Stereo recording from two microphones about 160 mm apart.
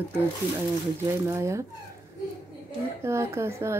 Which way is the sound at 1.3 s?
20° right (ahead or behind).